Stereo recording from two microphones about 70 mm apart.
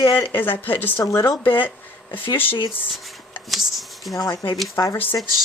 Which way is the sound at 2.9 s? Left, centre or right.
Centre.